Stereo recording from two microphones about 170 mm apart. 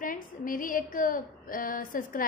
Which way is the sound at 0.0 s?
55° left (ahead or behind).